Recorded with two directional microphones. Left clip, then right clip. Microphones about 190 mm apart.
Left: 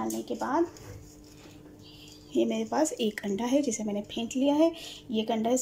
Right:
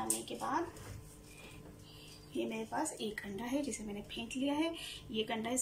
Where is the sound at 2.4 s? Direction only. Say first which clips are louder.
Left 11 dB; 40° left (ahead or behind).